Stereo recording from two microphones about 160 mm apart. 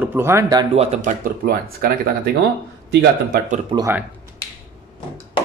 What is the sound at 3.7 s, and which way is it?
Speech, 30° right (ahead or behind).